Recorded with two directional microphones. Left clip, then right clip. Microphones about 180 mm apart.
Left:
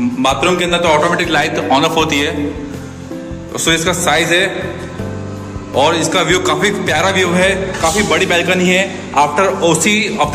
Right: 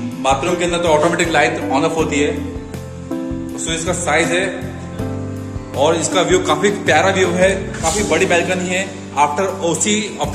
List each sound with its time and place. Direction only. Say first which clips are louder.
0.2 s a man's voice: left 2 dB; 5° right (ahead or behind)
0.8 s a man's voice: left 1 dB; 15° right (ahead or behind)
3.6 s a man's voice: left 7 dB; centre (ahead or behind)
5.8 s a man's voice: left 3 dB; 10° right (ahead or behind)
7.9 s a man's voice: even; centre (ahead or behind)
9.7 s a man's voice: left 6 dB; 15° right (ahead or behind)